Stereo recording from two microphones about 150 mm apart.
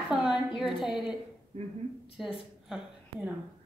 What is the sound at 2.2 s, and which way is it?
Speech, centre (ahead or behind).